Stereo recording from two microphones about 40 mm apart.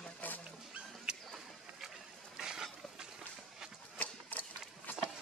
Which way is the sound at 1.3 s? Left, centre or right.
Centre.